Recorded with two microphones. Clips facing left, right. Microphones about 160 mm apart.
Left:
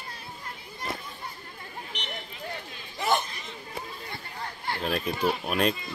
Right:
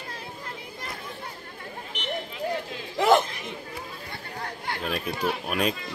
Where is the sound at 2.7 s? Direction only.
90° right.